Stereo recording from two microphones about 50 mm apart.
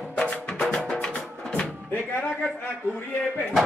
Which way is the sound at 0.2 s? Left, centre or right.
Left.